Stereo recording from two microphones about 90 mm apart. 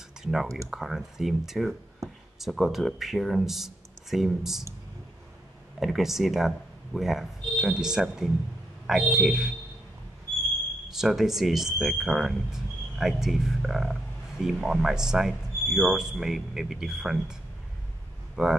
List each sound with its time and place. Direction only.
0.2 s speech: 5° right (ahead or behind)
5.8 s speech: centre (ahead or behind)
10.9 s speech: 5° right (ahead or behind)